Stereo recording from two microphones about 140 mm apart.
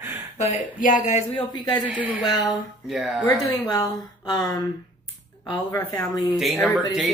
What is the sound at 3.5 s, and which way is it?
Speech, 25° left (ahead or behind).